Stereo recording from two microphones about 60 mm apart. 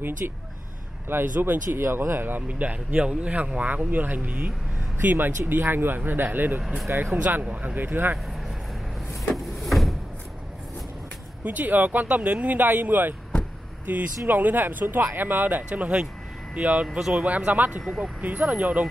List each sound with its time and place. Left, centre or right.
0.2 s speech: right
6.9 s speech: right
7.4 s speech: right
9.7 s a sound: centre
11.4 s speech: right
17.5 s speech: right
17.8 s speech: centre
18.2 s speech: right